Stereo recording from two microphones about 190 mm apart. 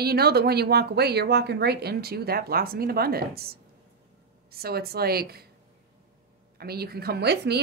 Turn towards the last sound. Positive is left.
turn(degrees=-60)  # may be behind; listen again after turning